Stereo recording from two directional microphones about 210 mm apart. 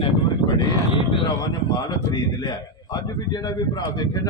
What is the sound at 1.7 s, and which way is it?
A man's voice, 20° left (ahead or behind).